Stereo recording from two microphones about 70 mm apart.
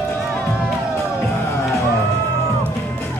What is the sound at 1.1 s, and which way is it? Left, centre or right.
Music, left.